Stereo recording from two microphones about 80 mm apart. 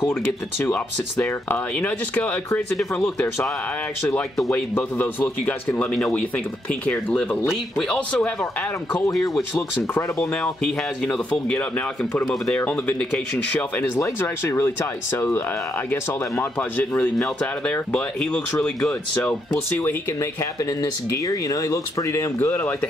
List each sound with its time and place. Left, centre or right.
1.5 s speech: left
2.8 s speech: centre
4.7 s speech: left
10.4 s speech: centre
14.0 s speech: left
16.3 s speech: centre
20.8 s speech: left
22.4 s speech: left